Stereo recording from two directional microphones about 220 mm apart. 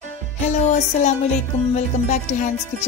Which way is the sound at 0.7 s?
30° left (ahead or behind).